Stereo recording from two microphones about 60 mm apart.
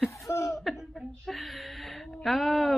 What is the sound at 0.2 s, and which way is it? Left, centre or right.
Chuckle, left.